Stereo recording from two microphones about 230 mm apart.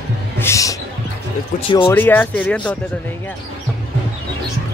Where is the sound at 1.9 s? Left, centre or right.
Centre.